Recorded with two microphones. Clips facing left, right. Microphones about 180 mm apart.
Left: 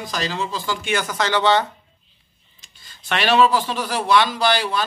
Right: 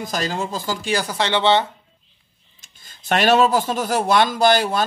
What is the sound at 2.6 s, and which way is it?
Speech, 45° right (ahead or behind).